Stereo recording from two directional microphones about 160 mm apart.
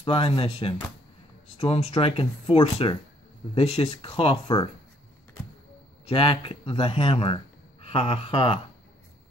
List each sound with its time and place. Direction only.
0.0 s speech: 35° left (ahead or behind)
6.0 s speech: 35° left (ahead or behind)